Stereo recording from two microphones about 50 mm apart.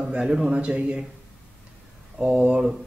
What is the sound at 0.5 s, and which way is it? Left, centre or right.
Speech, right.